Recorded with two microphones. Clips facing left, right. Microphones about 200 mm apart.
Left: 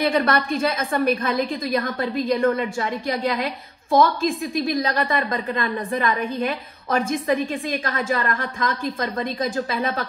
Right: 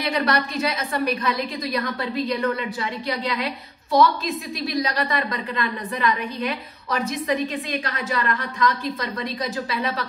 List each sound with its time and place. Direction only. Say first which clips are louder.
0.0 s a woman's voice: left 3 dB; 50° left (ahead or behind)